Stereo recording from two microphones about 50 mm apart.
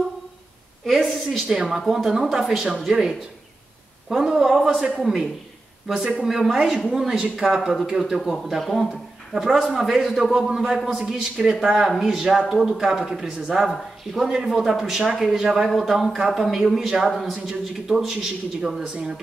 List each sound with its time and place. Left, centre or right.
1.0 s a woman's voice: centre
4.1 s speech: centre
7.2 s speech: centre
8.5 s a woman's voice: centre
13.7 s a woman's voice: centre